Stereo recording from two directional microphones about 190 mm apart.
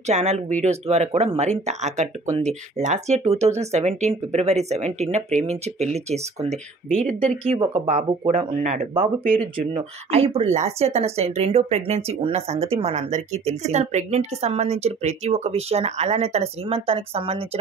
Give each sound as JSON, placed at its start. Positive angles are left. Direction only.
{"t": 0.0, "sound": "speech", "side_deg": -35}
{"t": 6.9, "sound": "speech", "side_deg": 5}
{"t": 7.5, "sound": "speech", "side_deg": -25}